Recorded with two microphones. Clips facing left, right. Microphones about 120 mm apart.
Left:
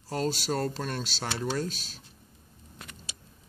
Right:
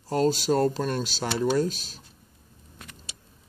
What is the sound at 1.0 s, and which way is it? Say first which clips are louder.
Cutlery: right 6 dB; 5° right (ahead or behind).